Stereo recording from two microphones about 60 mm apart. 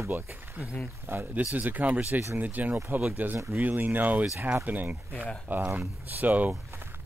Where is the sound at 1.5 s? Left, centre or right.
Right.